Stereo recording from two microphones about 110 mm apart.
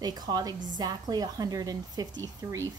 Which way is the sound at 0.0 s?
35° right (ahead or behind).